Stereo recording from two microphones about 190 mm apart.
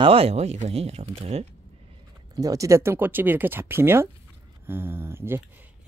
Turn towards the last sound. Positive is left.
turn(degrees=-10)  # may be behind; listen again after turning